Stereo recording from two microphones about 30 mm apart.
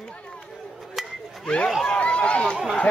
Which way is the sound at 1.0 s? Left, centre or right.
Centre.